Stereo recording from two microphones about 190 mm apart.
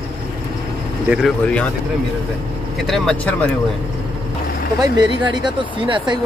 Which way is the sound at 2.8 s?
Centre (ahead or behind).